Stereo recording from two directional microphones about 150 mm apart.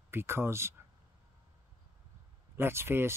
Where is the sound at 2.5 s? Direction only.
15° right (ahead or behind).